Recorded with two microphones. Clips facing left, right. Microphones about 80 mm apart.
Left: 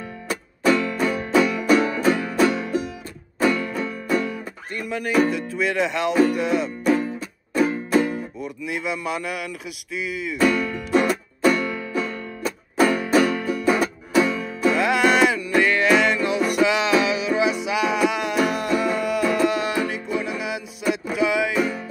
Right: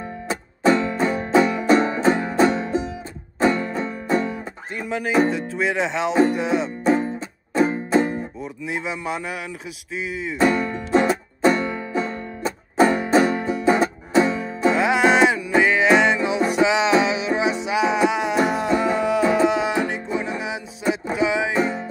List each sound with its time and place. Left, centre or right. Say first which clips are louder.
0.3 s music: right 1 dB; right
4.7 s speech: right 1 dB; centre
6.8 s music: right 1 dB; right
8.4 s speech: even; centre
10.3 s music: right 1 dB; right
14.8 s music: right 1 dB; centre
21.5 s music: right 1 dB; right